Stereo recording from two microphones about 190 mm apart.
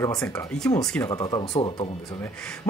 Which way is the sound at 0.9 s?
15° left (ahead or behind).